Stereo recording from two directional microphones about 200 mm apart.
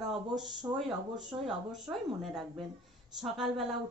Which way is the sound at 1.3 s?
20° right (ahead or behind).